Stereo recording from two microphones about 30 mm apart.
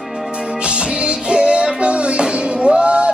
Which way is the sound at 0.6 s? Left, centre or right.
Right.